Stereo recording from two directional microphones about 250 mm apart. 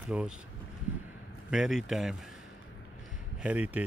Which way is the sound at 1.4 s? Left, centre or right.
Centre.